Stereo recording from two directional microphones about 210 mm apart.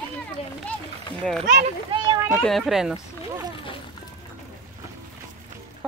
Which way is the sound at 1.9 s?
25° right (ahead or behind).